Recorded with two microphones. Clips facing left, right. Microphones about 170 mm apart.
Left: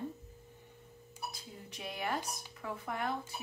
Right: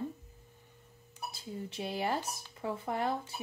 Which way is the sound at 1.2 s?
30° right (ahead or behind).